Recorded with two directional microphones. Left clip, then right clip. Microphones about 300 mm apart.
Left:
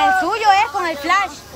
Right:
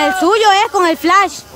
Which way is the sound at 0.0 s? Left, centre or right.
Right.